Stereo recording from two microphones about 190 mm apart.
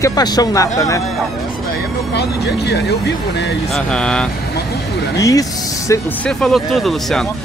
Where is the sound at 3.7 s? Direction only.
5° left (ahead or behind).